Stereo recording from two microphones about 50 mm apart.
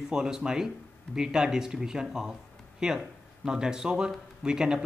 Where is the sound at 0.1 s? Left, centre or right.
Centre.